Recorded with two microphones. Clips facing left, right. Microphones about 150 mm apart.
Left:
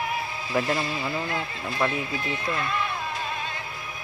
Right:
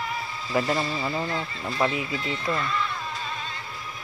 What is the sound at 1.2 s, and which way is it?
Speech, 55° left (ahead or behind).